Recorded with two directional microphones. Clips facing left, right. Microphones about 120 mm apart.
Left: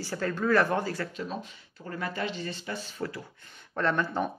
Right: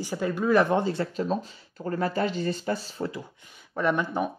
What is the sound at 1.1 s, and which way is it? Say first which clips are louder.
Speech: right 8 dB; 35° right (ahead or behind).